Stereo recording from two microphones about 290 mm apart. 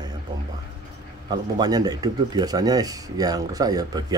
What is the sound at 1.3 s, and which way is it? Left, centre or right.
Speech, centre.